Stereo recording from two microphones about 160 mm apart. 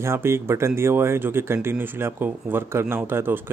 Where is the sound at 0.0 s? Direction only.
15° right (ahead or behind).